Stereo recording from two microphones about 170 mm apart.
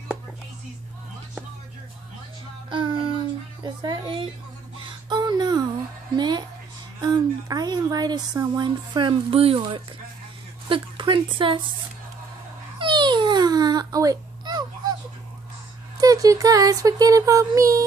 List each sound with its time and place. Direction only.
2.7 s a sound: 30° right (ahead or behind)
3.6 s speech: 25° right (ahead or behind)
4.7 s music: 25° right (ahead or behind)
7.0 s a sound: 25° right (ahead or behind)
10.7 s a woman's voice: 30° right (ahead or behind)
12.7 s babbling: 25° right (ahead or behind)
16.0 s speech: 20° right (ahead or behind)